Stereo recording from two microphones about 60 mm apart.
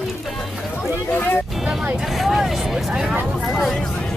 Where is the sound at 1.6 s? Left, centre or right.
Centre.